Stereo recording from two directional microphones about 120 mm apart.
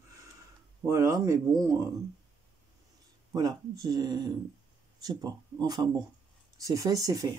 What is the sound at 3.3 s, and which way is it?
Speech, 35° right (ahead or behind).